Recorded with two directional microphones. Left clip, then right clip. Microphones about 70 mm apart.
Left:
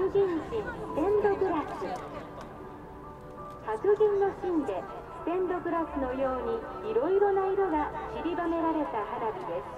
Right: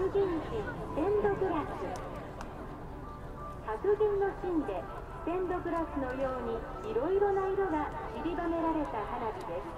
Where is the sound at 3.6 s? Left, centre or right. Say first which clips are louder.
Left 4 dB; centre.